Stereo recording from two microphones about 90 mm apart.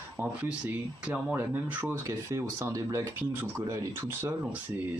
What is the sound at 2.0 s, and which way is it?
Speech, 35° right (ahead or behind).